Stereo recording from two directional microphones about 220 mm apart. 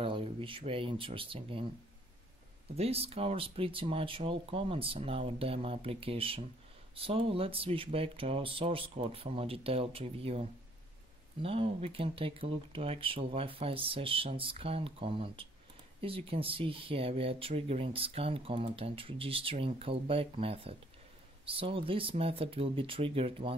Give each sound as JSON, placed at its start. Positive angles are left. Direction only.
{"t": 0.0, "sound": "speech", "side_deg": -25}
{"t": 2.7, "sound": "speech", "side_deg": -25}